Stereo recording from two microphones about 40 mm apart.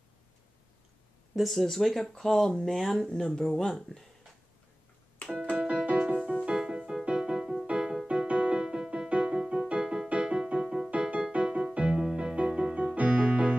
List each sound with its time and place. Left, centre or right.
1.3 s speech: centre
5.2 s keyboard: centre
5.5 s music: right
6.5 s music: centre
8.3 s music: right
9.1 s music: right
10.9 s music: right
12.0 s music: centre
12.9 s music: right